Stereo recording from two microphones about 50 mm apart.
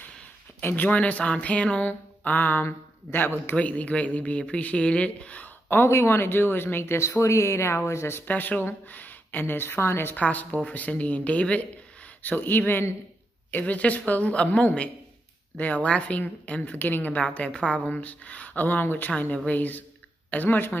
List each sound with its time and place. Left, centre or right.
0.7 s speech: left
1.8 s a sound: left
3.5 s speech: left
5.9 s speech: left
8.3 s speech: left
10.1 s speech: left
12.2 s speech: left
17.3 s speech: left